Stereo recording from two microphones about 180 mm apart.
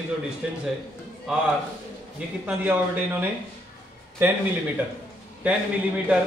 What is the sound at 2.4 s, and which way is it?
Speech, 10° right (ahead or behind).